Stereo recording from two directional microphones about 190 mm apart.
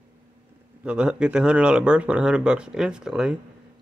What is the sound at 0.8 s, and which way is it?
Speech, 5° right (ahead or behind).